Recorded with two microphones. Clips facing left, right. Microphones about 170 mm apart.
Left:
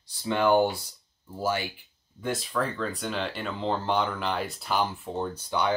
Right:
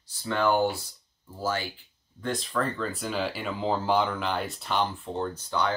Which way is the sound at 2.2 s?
5° left (ahead or behind).